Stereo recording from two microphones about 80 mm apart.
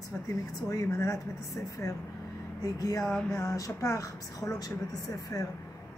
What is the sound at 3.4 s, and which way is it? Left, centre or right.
Speech, left.